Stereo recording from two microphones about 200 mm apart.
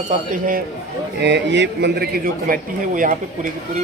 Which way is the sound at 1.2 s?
60° right (ahead or behind).